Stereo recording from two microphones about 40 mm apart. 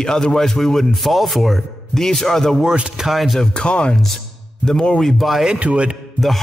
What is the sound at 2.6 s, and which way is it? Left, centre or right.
Speech, right.